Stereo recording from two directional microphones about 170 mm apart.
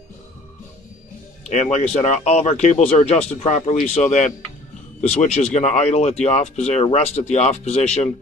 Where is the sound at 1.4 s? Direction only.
40° left (ahead or behind).